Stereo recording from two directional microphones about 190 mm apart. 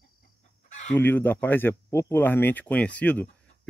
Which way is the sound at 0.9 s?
10° left (ahead or behind).